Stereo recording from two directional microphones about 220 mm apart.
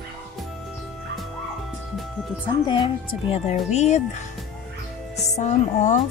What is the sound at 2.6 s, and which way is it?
Speech, 20° left (ahead or behind).